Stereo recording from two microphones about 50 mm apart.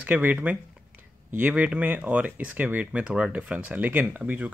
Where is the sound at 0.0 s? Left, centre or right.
Right; by 3.3 s centre.